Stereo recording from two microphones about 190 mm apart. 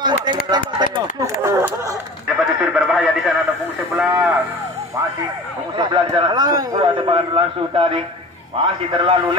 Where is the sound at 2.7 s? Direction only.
Centre (ahead or behind).